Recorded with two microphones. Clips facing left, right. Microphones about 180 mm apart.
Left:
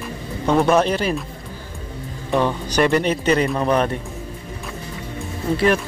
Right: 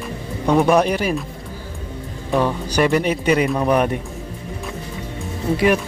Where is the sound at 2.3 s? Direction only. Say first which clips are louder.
Even; 5° right (ahead or behind).